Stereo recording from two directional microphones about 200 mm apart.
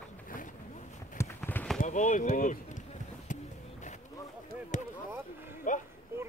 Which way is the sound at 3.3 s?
40° left (ahead or behind).